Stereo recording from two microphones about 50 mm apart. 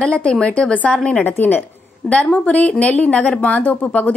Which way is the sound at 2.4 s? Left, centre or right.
Left.